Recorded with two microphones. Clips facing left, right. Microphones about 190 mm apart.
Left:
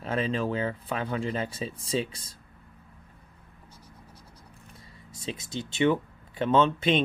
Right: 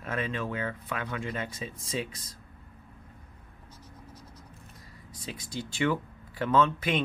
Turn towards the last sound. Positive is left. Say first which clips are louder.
# left 3 dB
turn(degrees=25)  # may be behind; listen again after turning